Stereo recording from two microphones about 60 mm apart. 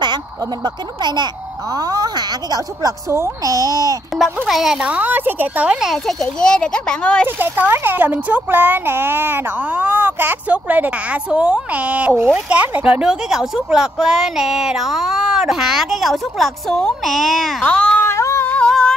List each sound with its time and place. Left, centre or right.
3.4 s a child's voice: right
4.2 s speech: centre
4.8 s a woman's voice: right
5.7 s a woman's voice: centre
6.4 s speech: centre
7.3 s speech: right
10.5 s a woman's voice: right
13.0 s a woman's voice: centre
17.6 s speech: centre
18.0 s singing: left
18.7 s singing: centre